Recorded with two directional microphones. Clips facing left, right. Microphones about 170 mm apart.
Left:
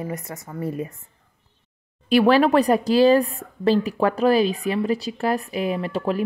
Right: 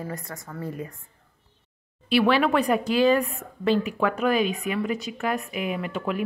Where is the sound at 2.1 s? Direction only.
40° left (ahead or behind).